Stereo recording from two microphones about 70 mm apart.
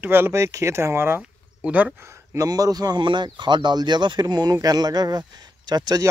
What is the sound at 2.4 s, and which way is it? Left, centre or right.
Speech, right.